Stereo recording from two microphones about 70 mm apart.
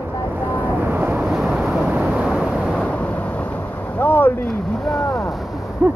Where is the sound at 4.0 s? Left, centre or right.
Left.